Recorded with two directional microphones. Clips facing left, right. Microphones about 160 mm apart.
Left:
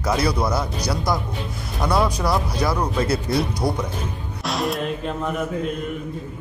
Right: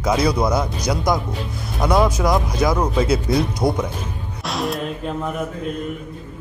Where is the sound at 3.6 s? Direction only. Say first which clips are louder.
Right 3 dB; 15° right (ahead or behind).